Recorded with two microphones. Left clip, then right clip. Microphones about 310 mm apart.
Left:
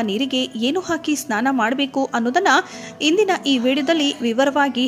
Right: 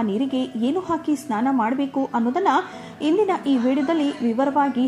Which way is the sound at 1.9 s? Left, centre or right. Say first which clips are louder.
Left 3 dB; left.